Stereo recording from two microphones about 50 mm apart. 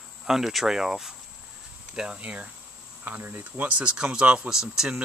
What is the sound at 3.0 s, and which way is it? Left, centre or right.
Speech, right.